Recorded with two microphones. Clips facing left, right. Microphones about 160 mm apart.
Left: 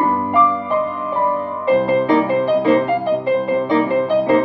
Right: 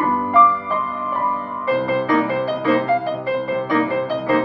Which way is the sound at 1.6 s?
25° left (ahead or behind).